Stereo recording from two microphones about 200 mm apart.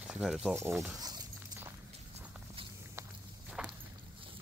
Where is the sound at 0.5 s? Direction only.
15° right (ahead or behind).